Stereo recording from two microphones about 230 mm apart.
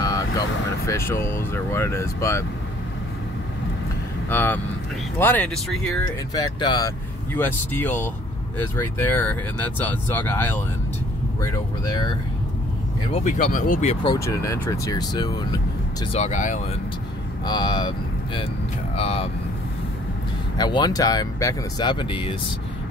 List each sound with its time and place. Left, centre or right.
0.8 s speech: centre
4.3 s speech: centre
6.3 s speech: centre
13.1 s speech: left
14.0 s speech: centre; by 16.5 s left
17.5 s speech: centre
20.5 s speech: centre